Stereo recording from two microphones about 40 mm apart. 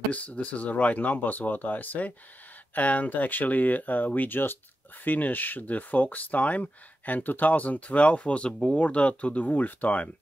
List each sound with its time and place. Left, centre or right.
0.1 s speech: left